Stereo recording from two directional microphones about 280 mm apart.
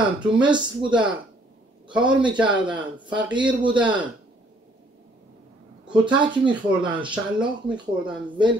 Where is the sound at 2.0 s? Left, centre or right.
Centre.